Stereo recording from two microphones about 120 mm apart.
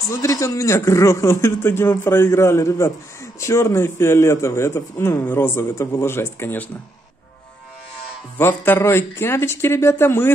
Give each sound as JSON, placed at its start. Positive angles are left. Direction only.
{"t": 0.1, "sound": "a man's voice", "side_deg": 25}
{"t": 8.4, "sound": "a man's voice", "side_deg": 20}